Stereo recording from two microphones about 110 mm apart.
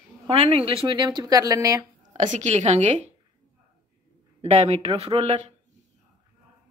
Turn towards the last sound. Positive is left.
turn(degrees=-65)  # may be behind; listen again after turning